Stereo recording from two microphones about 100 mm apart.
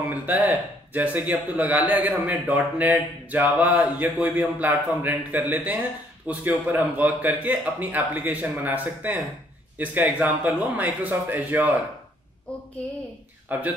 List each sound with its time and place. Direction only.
0.0 s speech: 15° right (ahead or behind)
13.5 s speech: 15° right (ahead or behind)